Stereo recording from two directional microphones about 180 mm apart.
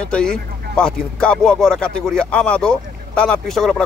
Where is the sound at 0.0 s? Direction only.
5° left (ahead or behind).